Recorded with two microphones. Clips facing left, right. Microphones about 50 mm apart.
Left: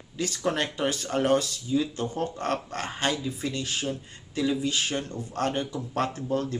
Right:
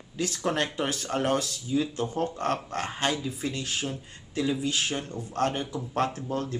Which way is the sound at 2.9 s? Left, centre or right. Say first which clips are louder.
Left 1 dB; centre.